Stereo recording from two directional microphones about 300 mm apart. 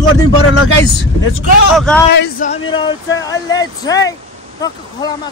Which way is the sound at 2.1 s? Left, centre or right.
Left.